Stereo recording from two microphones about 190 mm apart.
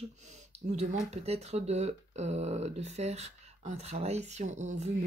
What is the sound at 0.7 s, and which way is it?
Speech, 35° right (ahead or behind).